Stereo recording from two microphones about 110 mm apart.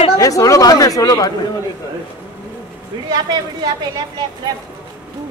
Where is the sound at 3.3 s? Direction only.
40° right (ahead or behind).